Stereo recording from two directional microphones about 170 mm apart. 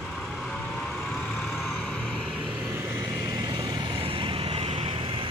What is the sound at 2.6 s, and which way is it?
Vehicle, 15° right (ahead or behind).